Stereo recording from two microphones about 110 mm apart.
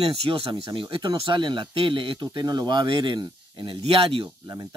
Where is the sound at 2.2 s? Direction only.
35° right (ahead or behind).